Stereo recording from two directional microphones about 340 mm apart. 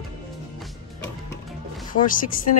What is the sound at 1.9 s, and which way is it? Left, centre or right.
Speech, left.